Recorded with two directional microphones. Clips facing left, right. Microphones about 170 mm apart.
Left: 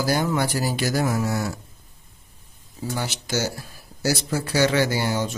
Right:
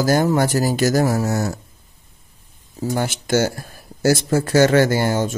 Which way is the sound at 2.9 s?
50° right (ahead or behind).